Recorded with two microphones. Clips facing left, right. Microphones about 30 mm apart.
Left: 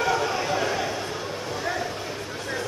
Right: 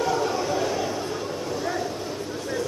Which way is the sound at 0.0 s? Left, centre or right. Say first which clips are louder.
Even; left.